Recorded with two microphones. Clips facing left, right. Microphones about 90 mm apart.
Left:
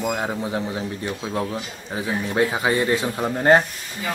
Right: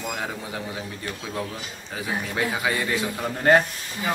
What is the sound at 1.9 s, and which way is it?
Speech, 25° left (ahead or behind).